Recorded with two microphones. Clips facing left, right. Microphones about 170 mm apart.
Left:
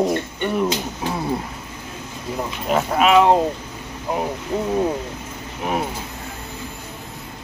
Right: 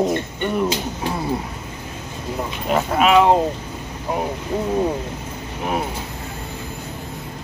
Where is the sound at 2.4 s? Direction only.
Centre (ahead or behind).